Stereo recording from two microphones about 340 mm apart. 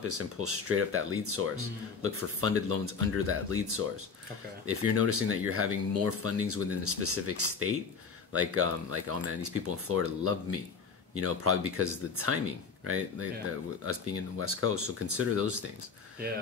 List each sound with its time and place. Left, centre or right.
0.4 s speech: right